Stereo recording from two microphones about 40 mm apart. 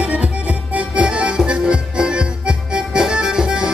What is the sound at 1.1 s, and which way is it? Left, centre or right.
Music, right.